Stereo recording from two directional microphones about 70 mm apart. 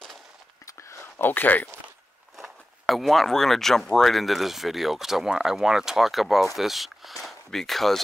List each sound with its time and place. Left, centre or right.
0.7 s a sound: left
1.2 s speech: left
2.3 s speech: centre